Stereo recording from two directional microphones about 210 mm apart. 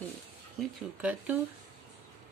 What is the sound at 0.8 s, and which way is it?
Speech, 5° right (ahead or behind).